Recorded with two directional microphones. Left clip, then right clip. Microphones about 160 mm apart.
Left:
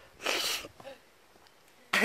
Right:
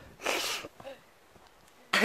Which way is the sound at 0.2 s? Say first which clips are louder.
Even; centre (ahead or behind).